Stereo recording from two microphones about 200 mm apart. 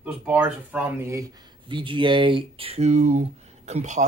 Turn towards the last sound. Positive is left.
turn(degrees=-35)  # may be behind; listen again after turning